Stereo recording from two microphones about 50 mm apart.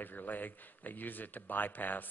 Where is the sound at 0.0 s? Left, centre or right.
Left.